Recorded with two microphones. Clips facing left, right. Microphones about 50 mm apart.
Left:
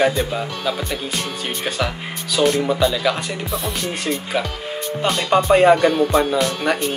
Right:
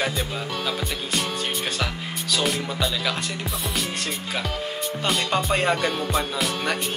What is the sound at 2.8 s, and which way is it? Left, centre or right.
Speech, centre.